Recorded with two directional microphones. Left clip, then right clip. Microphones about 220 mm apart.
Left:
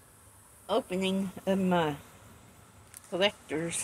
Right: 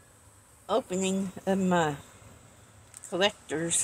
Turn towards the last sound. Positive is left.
turn(degrees=-35)  # may be behind; listen again after turning